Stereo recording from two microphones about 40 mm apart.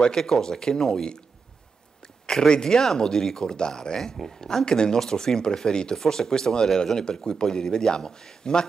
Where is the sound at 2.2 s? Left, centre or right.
Centre.